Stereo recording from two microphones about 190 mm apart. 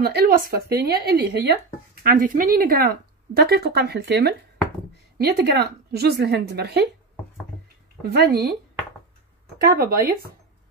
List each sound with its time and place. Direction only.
0.0 s speech: 55° right (ahead or behind)
8.0 s speech: 55° right (ahead or behind)
9.8 s speech: 50° right (ahead or behind)